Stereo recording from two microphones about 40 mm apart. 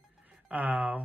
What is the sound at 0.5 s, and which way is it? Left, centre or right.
Speech, right.